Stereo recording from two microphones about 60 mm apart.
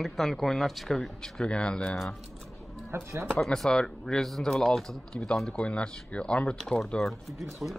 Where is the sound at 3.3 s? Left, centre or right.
Centre.